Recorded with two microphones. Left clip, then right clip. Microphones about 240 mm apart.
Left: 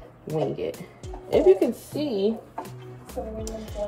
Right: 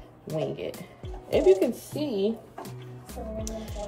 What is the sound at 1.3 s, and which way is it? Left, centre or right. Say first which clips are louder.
Speech: left 2 dB; centre.